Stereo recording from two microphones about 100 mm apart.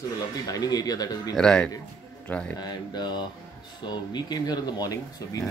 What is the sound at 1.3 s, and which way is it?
A man's voice, 5° left (ahead or behind).